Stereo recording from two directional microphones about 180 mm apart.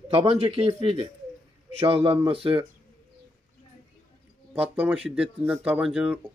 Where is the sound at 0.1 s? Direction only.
30° right (ahead or behind).